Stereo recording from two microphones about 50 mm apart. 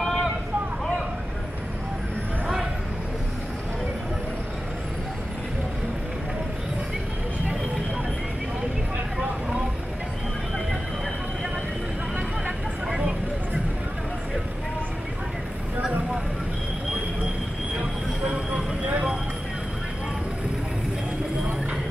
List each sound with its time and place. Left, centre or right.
0.0 s a sound: centre
12.8 s vehicle: centre
18.2 s vehicle: centre